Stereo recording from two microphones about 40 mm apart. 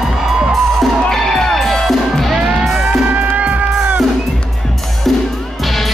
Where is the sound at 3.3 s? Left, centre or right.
Right.